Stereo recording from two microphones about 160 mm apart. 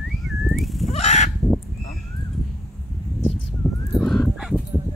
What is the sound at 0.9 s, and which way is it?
Fowl, 45° left (ahead or behind).